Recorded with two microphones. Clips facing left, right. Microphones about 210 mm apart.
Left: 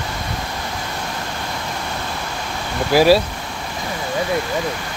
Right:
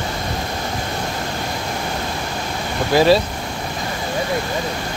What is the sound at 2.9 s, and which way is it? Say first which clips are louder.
Speech: left 1 dB; 5° left (ahead or behind).